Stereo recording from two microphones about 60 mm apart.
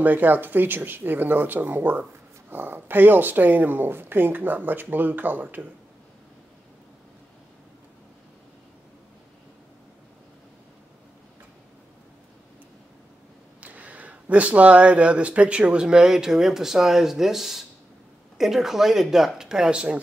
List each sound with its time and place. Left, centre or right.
0.0 s speech: right
13.6 s speech: right